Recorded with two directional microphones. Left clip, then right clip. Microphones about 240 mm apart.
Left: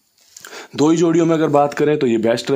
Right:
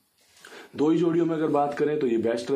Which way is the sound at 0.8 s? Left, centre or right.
Left.